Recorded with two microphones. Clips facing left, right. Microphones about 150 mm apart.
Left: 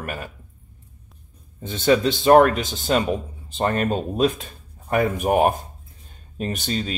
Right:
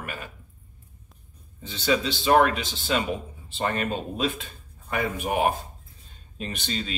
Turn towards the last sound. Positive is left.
turn(degrees=45)  # may be behind; listen again after turning